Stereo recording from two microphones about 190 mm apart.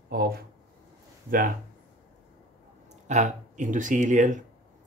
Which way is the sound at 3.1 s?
40° right (ahead or behind).